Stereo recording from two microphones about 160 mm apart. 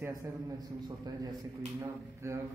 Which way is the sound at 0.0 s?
20° right (ahead or behind).